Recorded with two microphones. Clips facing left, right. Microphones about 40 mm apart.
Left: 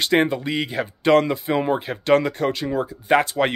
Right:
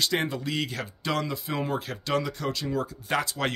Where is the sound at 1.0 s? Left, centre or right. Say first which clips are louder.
Left 13 dB; left.